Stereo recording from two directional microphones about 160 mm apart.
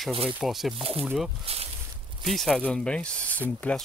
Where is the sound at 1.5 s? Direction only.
40° right (ahead or behind).